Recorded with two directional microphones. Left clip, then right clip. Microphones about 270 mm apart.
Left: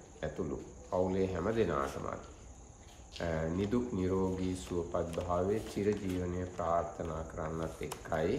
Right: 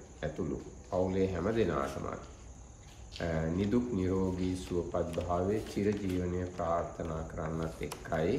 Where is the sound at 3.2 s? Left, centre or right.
Centre.